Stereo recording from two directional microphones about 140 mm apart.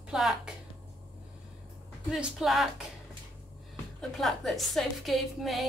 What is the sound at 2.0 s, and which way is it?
Speech, centre (ahead or behind).